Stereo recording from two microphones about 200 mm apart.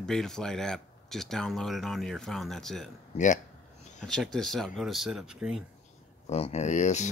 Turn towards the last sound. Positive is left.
turn(degrees=35)  # may be behind; listen again after turning